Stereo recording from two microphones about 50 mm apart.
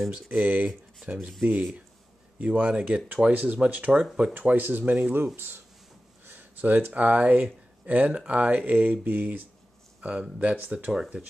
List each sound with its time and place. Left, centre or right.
0.1 s speech: right
4.3 s speech: right